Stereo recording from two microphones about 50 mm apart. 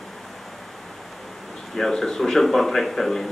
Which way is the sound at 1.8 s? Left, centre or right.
Centre.